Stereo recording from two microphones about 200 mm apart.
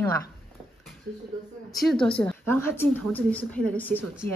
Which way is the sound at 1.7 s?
Centre (ahead or behind).